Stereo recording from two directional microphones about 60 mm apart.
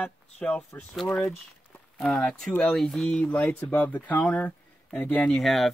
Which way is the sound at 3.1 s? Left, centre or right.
Centre.